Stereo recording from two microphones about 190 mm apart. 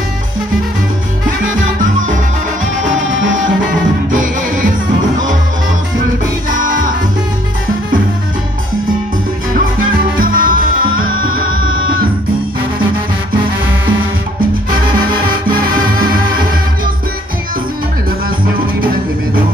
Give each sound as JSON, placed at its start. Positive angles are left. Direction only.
{"t": 4.1, "sound": "music", "side_deg": -45}
{"t": 10.1, "sound": "music", "side_deg": -50}
{"t": 11.0, "sound": "music", "side_deg": -90}
{"t": 11.3, "sound": "music", "side_deg": -50}